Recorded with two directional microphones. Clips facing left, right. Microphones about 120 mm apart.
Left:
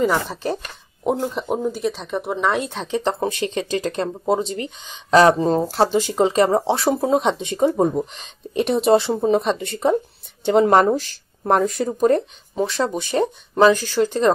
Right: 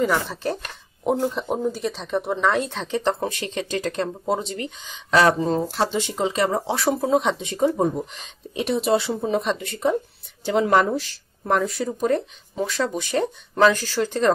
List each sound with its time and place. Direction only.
0.3 s a woman's voice: 15° left (ahead or behind)
8.5 s a woman's voice: 45° left (ahead or behind)
12.5 s a woman's voice: 30° left (ahead or behind)